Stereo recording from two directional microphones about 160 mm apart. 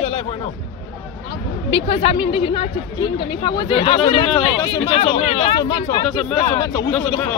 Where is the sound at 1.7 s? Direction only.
35° left (ahead or behind).